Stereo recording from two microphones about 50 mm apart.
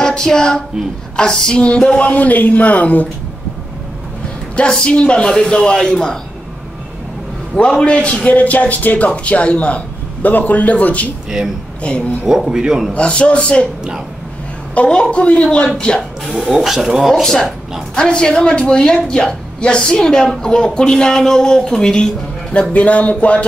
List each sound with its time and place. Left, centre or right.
0.0 s female singing: centre
1.1 s a man's voice: centre; by 3.1 s left
4.6 s a woman's voice: centre
7.5 s a man's voice: left
11.2 s speech: centre
11.8 s a man's voice: left
12.3 s speech: centre
12.9 s a man's voice: left
14.9 s a man's voice: centre
16.3 s speech: centre
17.1 s a woman's voice: centre
22.5 s a man's voice: left